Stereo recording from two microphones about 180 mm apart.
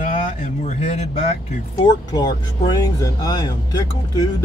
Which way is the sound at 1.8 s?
20° left (ahead or behind).